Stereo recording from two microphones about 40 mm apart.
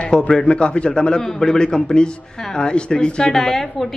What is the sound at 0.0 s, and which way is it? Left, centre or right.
A man's voice, centre.